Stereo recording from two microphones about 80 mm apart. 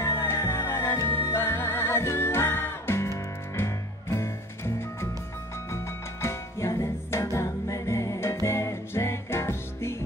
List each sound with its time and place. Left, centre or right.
0.0 s music: left
6.2 s music: left